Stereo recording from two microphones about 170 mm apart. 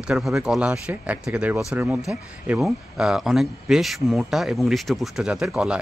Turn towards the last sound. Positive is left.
turn(degrees=-5)  # may be behind; listen again after turning